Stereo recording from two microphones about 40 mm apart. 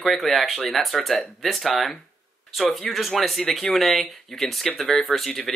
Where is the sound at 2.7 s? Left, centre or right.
Centre.